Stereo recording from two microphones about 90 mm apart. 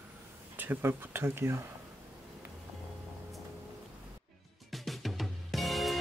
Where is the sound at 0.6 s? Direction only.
25° right (ahead or behind).